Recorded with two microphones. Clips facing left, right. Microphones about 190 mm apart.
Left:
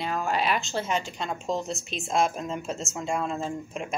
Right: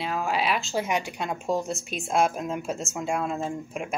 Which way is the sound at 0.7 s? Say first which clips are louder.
Right 2 dB; 15° right (ahead or behind).